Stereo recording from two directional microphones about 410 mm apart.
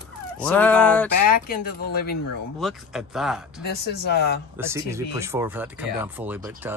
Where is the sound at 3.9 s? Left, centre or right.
Left.